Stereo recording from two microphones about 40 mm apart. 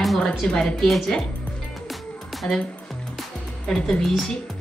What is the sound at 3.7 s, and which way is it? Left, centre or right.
Speech, centre.